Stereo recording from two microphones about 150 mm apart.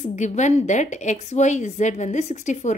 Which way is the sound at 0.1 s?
50° left (ahead or behind).